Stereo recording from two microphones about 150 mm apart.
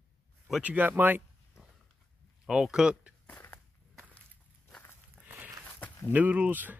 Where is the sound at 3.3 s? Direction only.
15° left (ahead or behind).